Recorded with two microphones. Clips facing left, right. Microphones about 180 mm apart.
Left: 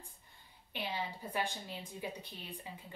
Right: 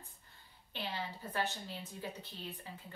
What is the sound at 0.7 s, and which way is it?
A woman's voice, 15° left (ahead or behind).